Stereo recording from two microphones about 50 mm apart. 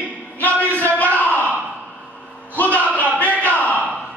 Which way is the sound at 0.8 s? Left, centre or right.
Left.